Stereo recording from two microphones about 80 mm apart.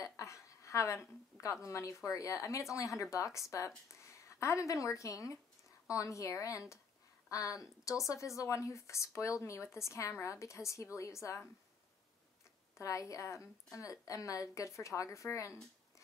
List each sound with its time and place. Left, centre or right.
0.0 s a woman's voice: left
12.7 s speech: left